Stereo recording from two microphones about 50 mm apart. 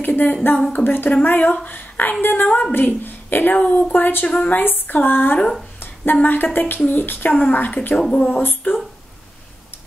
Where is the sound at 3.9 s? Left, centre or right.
Left.